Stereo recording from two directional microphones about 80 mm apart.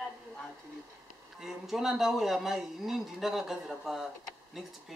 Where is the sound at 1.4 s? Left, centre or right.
Centre.